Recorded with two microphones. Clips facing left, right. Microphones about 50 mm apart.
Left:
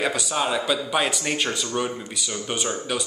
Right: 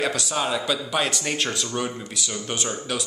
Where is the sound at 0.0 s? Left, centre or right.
Centre.